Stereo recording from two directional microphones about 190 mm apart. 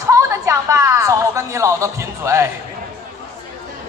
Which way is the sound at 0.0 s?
15° right (ahead or behind).